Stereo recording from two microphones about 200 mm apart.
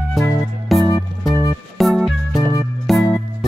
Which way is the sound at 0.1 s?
Centre (ahead or behind).